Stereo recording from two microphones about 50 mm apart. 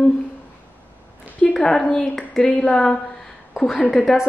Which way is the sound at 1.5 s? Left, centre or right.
Centre.